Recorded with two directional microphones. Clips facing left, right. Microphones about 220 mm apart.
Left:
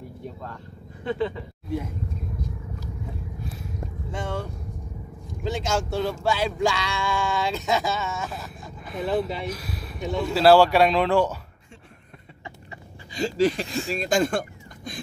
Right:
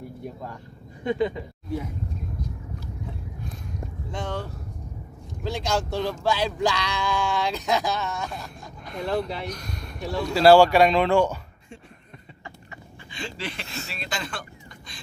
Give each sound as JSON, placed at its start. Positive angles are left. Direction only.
{"t": 0.2, "sound": "speech", "side_deg": -15}
{"t": 1.0, "sound": "a sound", "side_deg": -15}
{"t": 4.1, "sound": "speech", "side_deg": 0}
{"t": 5.5, "sound": "speech", "side_deg": 0}
{"t": 13.1, "sound": "speech", "side_deg": 40}